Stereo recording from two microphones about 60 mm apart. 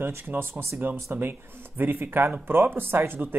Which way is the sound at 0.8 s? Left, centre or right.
Right.